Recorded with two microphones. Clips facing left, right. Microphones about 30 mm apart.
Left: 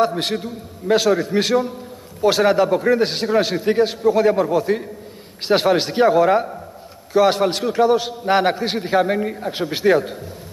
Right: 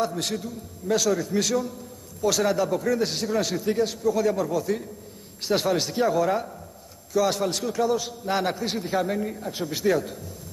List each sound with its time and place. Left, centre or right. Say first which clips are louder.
0.0 s a man's voice: left 8 dB; left